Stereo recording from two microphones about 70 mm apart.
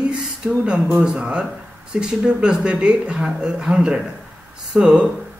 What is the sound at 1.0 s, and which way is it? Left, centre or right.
Speech, centre.